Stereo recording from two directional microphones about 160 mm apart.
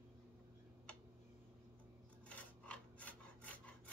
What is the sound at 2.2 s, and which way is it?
Rub, 10° left (ahead or behind).